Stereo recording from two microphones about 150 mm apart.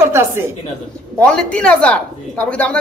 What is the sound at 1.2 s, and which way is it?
Speech, 5° left (ahead or behind).